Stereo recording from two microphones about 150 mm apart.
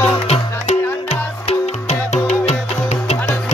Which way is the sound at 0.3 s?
45° left (ahead or behind).